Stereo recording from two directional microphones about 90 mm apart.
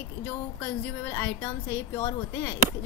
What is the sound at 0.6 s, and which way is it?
A woman's voice, 25° left (ahead or behind).